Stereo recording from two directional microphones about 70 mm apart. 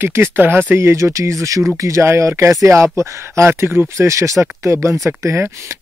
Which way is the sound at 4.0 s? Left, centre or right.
Right.